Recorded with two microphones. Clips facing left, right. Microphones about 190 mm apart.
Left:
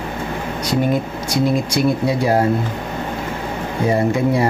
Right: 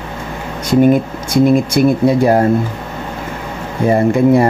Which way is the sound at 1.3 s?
50° right (ahead or behind).